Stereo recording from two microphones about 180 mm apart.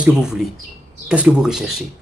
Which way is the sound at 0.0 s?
5° right (ahead or behind).